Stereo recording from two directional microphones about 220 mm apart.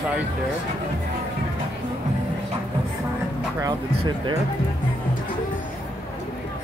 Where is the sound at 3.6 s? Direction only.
20° right (ahead or behind).